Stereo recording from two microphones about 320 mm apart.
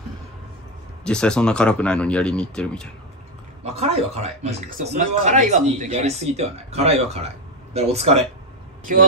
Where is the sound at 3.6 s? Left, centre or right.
Centre.